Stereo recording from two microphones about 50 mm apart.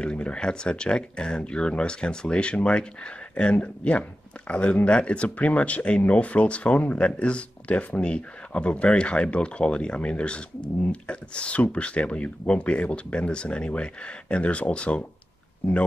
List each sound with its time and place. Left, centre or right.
0.0 s speech: left